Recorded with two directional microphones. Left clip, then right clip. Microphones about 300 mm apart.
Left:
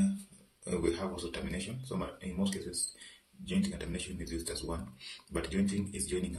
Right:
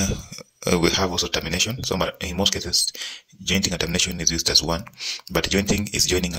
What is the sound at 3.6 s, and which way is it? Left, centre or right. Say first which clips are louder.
Speech: right 18 dB; right.